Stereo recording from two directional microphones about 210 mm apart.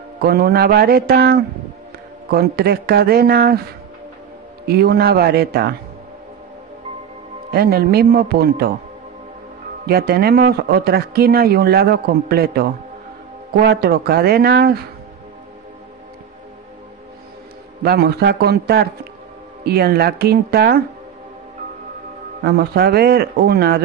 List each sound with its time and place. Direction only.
0.2 s speech: 50° right (ahead or behind)
4.6 s speech: 50° right (ahead or behind)
7.5 s speech: 50° right (ahead or behind)
9.8 s speech: 50° right (ahead or behind)
17.8 s speech: 50° right (ahead or behind)
22.4 s speech: 50° right (ahead or behind)